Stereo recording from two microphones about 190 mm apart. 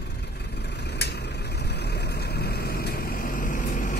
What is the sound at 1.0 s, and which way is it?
Vehicle, 60° left (ahead or behind).